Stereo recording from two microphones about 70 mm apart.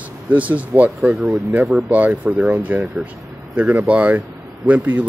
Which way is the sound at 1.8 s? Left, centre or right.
Right.